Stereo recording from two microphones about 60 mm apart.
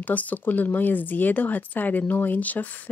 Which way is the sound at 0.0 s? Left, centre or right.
Left.